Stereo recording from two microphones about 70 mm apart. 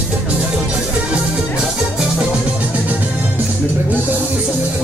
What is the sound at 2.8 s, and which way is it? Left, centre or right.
Music, right.